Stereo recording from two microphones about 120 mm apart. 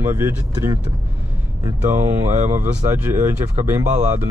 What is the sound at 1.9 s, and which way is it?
Speech, 20° right (ahead or behind).